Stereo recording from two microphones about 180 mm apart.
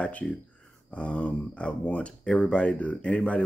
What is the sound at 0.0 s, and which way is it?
Speech, 5° left (ahead or behind).